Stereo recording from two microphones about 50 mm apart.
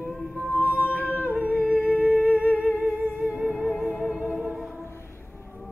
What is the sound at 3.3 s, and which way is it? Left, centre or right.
Music, centre.